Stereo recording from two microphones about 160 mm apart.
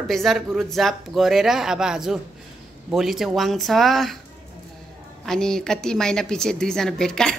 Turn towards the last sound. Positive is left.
turn(degrees=5)  # may be behind; listen again after turning